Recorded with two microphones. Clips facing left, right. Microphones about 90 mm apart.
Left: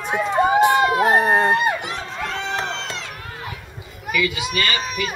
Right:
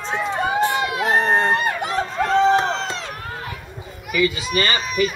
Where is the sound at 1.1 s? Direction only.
10° left (ahead or behind).